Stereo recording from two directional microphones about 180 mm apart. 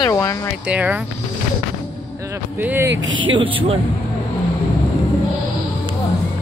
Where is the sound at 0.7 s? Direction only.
10° right (ahead or behind).